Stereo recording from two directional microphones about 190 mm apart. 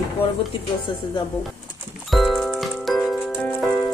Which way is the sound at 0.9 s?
25° left (ahead or behind).